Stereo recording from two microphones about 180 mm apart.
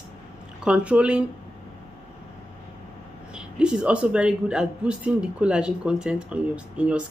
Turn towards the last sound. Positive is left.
turn(degrees=-5)  # may be behind; listen again after turning